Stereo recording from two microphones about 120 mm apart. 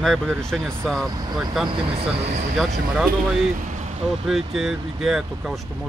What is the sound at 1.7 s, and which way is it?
Speech, 45° right (ahead or behind).